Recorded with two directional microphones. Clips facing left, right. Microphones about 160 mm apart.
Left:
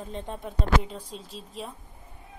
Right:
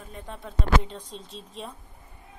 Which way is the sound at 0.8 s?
5° left (ahead or behind).